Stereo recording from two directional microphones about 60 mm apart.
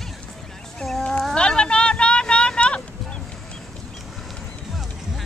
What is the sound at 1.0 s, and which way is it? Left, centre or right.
Vehicle, centre.